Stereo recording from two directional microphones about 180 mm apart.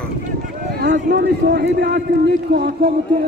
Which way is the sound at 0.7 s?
80° right.